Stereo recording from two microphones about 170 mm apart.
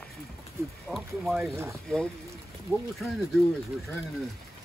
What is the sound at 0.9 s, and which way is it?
Speech, centre (ahead or behind).